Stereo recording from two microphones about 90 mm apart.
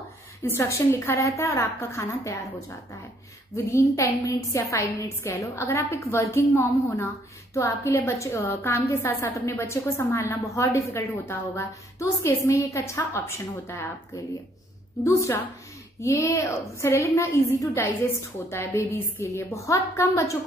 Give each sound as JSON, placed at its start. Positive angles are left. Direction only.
{"t": 0.4, "sound": "a woman's voice", "side_deg": 30}
{"t": 3.5, "sound": "a woman's voice", "side_deg": 30}